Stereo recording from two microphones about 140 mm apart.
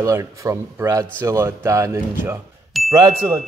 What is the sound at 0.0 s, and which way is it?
A man's voice, 20° right (ahead or behind).